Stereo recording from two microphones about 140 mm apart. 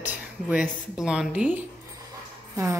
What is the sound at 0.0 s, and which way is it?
A woman's voice, 10° right (ahead or behind).